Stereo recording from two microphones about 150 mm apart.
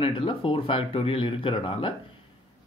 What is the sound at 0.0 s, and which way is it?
Speech, 35° left (ahead or behind).